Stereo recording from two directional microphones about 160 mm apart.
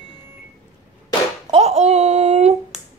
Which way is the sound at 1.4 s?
40° right (ahead or behind).